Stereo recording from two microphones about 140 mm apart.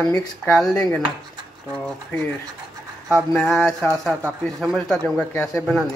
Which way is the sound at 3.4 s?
Centre (ahead or behind).